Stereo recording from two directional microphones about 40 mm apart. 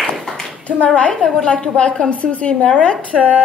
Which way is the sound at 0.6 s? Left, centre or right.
Left.